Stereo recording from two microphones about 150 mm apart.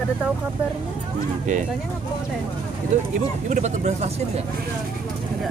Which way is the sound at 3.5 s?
45° right (ahead or behind).